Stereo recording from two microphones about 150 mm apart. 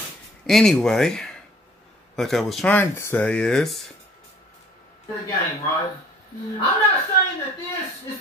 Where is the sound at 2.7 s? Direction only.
15° left (ahead or behind).